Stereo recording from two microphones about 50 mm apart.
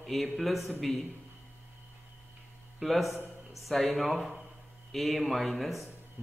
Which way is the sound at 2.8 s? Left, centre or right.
Centre.